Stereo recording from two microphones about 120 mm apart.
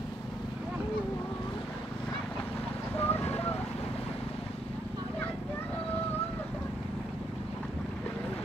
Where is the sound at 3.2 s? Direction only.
60° left (ahead or behind).